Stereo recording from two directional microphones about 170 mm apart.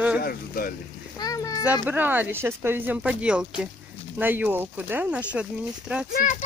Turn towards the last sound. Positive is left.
turn(degrees=50)  # may be behind; listen again after turning